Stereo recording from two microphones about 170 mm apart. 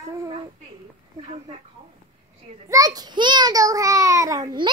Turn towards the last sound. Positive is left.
turn(degrees=-25)  # may be behind; listen again after turning